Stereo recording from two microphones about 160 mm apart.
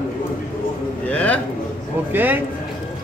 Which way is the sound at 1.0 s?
10° left (ahead or behind).